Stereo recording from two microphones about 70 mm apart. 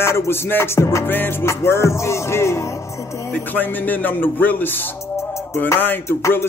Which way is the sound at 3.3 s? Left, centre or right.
Left.